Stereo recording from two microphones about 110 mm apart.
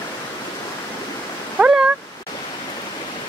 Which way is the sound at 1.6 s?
15° right (ahead or behind).